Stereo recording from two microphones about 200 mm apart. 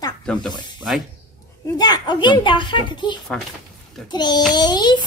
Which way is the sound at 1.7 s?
20° left (ahead or behind).